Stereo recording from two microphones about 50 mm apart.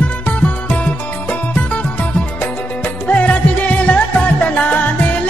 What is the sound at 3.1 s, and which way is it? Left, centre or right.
Music, left.